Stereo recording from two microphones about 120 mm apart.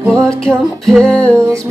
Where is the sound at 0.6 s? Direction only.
Centre (ahead or behind).